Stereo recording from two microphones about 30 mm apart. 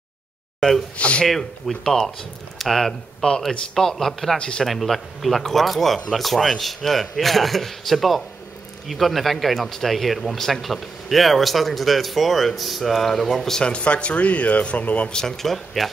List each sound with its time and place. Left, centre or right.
0.6 s a sound: centre
0.9 s a sound: left
1.2 s speech: centre
4.4 s speech: left
4.6 s speech: centre
13.7 s speech: left
14.8 s speech: left
15.2 s speech: centre